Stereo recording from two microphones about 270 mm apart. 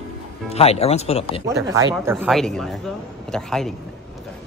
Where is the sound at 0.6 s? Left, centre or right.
Left.